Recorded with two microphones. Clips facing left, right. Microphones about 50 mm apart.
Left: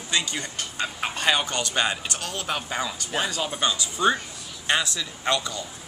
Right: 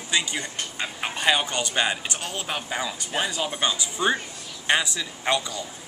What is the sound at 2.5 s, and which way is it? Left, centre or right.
Speech, centre.